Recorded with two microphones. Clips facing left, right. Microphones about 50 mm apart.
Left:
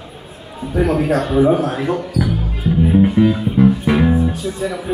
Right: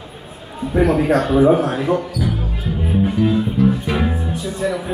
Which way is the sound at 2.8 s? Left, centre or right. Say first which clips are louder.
Left 5 dB; centre.